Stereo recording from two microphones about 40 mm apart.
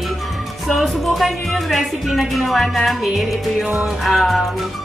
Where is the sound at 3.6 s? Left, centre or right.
Centre.